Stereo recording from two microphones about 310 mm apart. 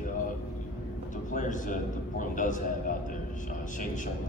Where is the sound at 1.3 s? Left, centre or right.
Left.